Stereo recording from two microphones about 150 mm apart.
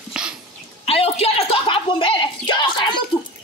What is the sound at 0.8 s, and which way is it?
Speech, 40° left (ahead or behind).